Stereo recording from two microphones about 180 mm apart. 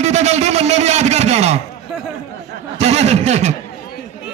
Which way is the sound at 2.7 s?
35° right (ahead or behind).